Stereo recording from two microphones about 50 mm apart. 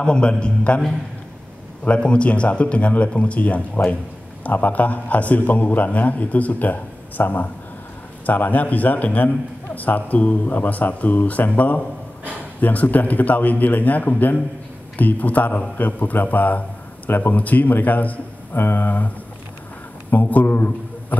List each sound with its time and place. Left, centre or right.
0.0 s a man's voice: centre
1.9 s a man's voice: left
20.1 s a man's voice: left